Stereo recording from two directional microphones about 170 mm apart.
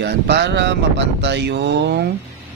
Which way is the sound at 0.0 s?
85° right.